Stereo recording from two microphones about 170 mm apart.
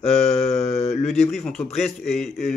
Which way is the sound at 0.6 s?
40° left (ahead or behind).